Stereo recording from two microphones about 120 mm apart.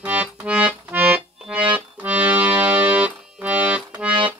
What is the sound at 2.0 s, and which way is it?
Accordion, 10° right (ahead or behind).